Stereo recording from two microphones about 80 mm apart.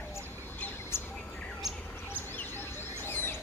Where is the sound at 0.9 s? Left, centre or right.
Left.